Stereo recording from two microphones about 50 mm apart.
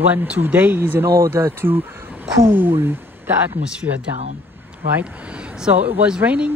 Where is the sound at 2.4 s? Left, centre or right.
Right.